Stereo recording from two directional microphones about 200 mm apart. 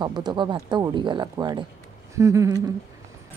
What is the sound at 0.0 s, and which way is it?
Speech, 20° right (ahead or behind).